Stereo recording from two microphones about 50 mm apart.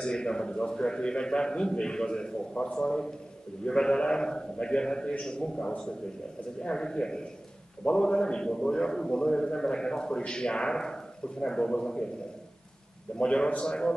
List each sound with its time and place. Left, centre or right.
0.0 s a man's voice: centre
13.2 s a man's voice: centre